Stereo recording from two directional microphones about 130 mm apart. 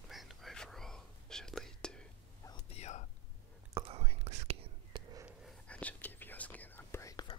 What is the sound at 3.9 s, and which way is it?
Whispering, 55° right (ahead or behind).